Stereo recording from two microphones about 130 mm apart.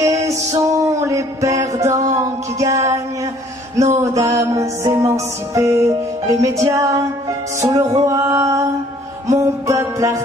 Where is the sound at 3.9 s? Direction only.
25° right (ahead or behind).